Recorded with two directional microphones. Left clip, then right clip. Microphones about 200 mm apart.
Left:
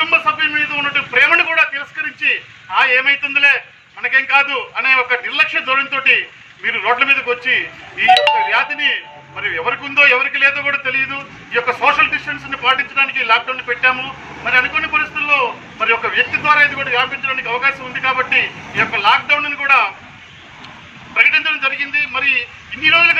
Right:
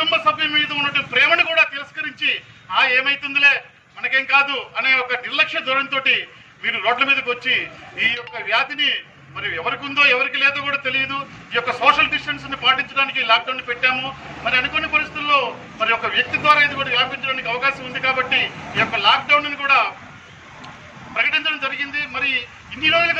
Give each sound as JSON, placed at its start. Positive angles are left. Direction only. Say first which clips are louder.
{"t": 0.0, "sound": "a man's voice", "louder": "left 3 dB", "side_deg": -50}
{"t": 21.1, "sound": "a man's voice", "louder": "left 6 dB", "side_deg": -50}